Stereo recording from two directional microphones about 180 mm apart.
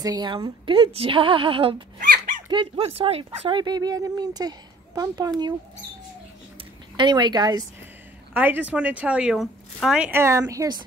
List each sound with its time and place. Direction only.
0.0 s a woman's voice: 25° right (ahead or behind)
7.0 s a woman's voice: 25° right (ahead or behind)
8.3 s speech: 10° right (ahead or behind)